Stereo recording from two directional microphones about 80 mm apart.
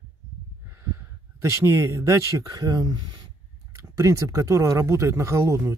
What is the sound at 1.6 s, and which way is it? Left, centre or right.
Speech, right.